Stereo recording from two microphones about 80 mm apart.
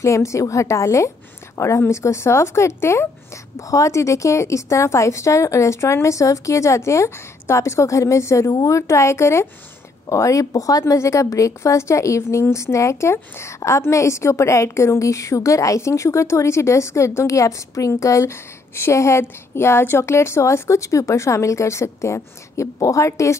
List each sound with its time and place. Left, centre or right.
0.0 s speech: left
8.5 s a woman's voice: left
8.7 s speech: left